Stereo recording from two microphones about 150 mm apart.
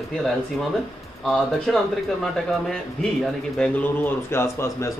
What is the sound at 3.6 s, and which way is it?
Speech, 10° left (ahead or behind).